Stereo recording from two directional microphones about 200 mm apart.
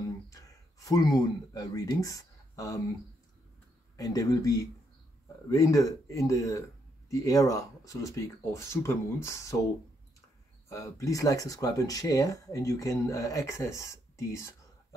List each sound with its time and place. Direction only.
0.3 s speech: 15° left (ahead or behind)
3.9 s speech: 15° left (ahead or behind)
10.7 s speech: 15° left (ahead or behind)